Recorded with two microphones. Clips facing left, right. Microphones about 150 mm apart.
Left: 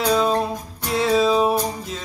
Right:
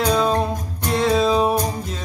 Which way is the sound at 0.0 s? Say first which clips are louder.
Even; centre (ahead or behind).